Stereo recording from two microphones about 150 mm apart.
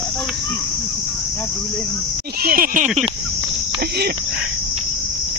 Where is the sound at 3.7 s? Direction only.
90° right.